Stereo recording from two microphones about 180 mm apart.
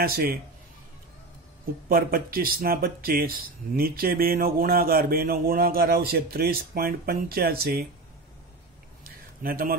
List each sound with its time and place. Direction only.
0.0 s speech: 55° right (ahead or behind)
1.9 s speech: 55° right (ahead or behind)
9.4 s speech: 55° right (ahead or behind)